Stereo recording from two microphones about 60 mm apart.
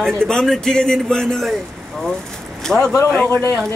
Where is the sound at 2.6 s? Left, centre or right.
Centre.